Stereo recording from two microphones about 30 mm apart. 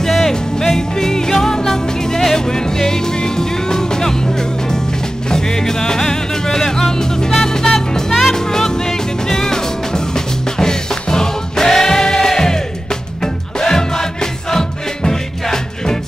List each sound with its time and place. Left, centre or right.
0.3 s music: centre